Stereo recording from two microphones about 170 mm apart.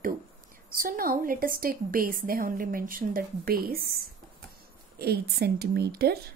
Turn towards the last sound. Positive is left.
turn(degrees=-65)  # may be behind; listen again after turning